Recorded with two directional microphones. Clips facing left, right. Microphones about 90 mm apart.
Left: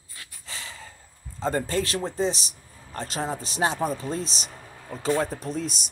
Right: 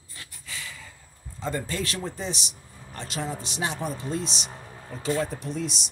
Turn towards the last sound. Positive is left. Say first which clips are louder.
# left 1 dB
turn(degrees=40)  # may be behind; listen again after turning